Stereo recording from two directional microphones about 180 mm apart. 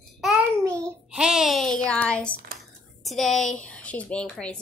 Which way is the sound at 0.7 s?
15° right (ahead or behind).